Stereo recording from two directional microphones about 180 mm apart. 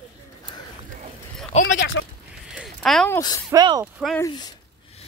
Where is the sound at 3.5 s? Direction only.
20° right (ahead or behind).